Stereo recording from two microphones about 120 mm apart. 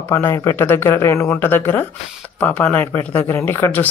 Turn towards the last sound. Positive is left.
turn(degrees=20)  # may be behind; listen again after turning